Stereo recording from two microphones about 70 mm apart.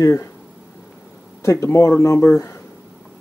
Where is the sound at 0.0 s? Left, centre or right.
Left.